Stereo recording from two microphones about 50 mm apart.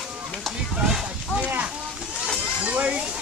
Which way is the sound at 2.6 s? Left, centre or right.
Right.